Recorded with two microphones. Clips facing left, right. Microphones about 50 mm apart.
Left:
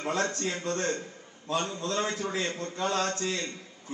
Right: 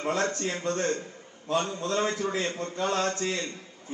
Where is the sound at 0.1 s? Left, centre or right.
Right.